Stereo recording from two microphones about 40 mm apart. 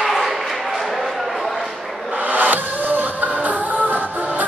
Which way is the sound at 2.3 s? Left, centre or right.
Right.